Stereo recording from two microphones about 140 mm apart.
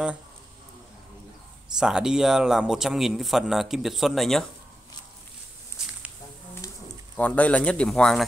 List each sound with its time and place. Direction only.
1.8 s speech: 5° right (ahead or behind)
6.6 s pigeon: 20° left (ahead or behind)
7.2 s speech: 10° left (ahead or behind)